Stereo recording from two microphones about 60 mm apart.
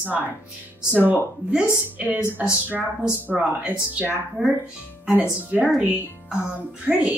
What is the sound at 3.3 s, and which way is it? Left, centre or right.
Speech, centre.